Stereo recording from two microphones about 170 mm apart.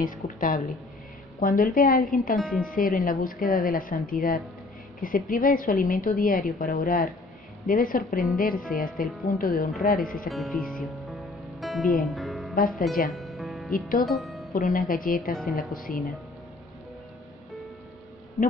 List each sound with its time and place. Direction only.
0.0 s a woman's voice: 55° left (ahead or behind)
2.3 s speech: centre (ahead or behind)
2.6 s a woman's voice: 55° left (ahead or behind)
10.3 s music: centre (ahead or behind)
12.5 s a woman's voice: 55° left (ahead or behind)
13.1 s music: centre (ahead or behind)
14.5 s a woman's voice: 55° left (ahead or behind)